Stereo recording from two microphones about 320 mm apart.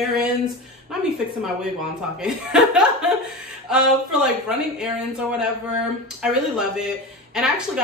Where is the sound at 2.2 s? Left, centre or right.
Centre.